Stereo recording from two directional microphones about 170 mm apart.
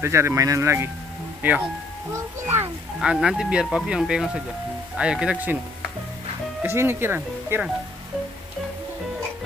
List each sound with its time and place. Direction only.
0.0 s speech: 15° right (ahead or behind)
3.0 s speech: 5° right (ahead or behind)
6.6 s speech: 15° right (ahead or behind)